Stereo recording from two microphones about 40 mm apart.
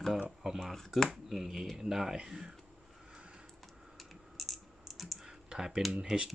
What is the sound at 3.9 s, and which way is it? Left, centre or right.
Typing, centre.